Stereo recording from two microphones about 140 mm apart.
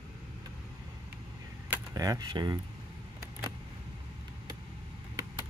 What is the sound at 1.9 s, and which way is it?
Speech, 25° right (ahead or behind).